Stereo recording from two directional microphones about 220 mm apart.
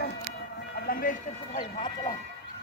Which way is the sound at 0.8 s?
40° left (ahead or behind).